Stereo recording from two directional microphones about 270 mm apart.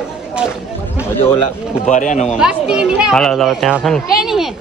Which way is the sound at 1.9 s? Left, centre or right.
Left.